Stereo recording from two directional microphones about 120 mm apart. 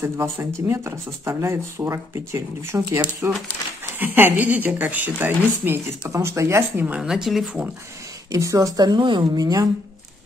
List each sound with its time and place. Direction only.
0.0 s speech: 25° right (ahead or behind)
7.0 s speech: 5° right (ahead or behind)
8.3 s speech: 30° right (ahead or behind)